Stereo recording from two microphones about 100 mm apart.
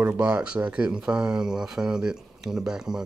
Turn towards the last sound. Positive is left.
turn(degrees=-5)  # may be behind; listen again after turning